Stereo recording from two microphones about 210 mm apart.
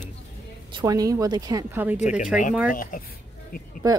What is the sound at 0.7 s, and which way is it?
Speech, 15° right (ahead or behind).